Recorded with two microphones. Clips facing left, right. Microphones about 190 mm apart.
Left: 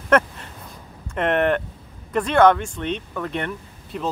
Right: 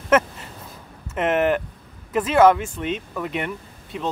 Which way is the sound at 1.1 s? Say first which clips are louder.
Even; 5° right (ahead or behind).